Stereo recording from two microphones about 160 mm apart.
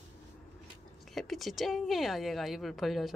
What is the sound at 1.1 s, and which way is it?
Speech, centre (ahead or behind).